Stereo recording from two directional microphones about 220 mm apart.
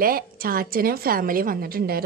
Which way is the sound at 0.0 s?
40° right (ahead or behind).